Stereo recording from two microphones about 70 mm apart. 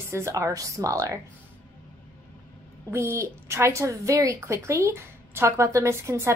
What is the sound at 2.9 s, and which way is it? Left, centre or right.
A woman's voice, right.